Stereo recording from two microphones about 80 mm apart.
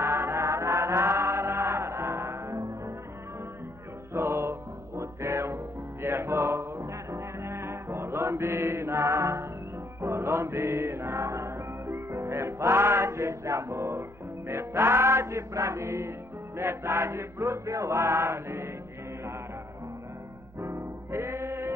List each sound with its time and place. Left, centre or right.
0.0 s music: right
4.1 s music: right
14.5 s chant: right
20.6 s music: right